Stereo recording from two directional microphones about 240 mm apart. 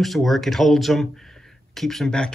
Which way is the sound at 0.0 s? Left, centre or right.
Centre.